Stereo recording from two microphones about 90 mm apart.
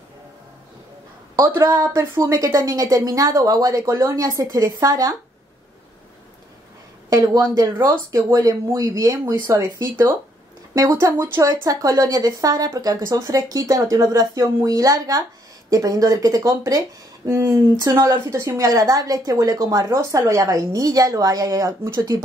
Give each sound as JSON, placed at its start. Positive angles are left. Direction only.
{"t": 1.3, "sound": "speech", "side_deg": -35}
{"t": 7.1, "sound": "speech", "side_deg": -40}